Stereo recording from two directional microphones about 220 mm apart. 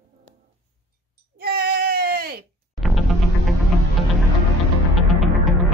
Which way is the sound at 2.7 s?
Centre (ahead or behind).